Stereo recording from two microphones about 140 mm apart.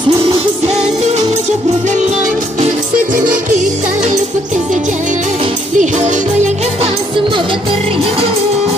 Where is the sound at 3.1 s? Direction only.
65° right (ahead or behind).